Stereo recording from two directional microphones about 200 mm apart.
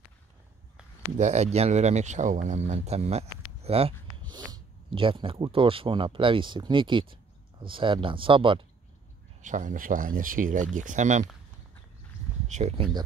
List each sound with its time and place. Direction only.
1.1 s speech: 35° right (ahead or behind)
9.4 s speech: 40° right (ahead or behind)
12.4 s speech: 35° right (ahead or behind)